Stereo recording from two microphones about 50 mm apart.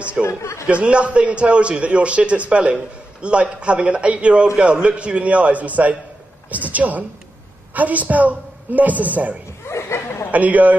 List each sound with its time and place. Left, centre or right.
0.3 s speech: left
0.7 s a man's voice: right
9.7 s a sound: left
10.3 s a man's voice: right